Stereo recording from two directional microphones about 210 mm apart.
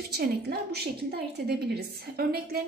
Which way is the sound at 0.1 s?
45° right (ahead or behind).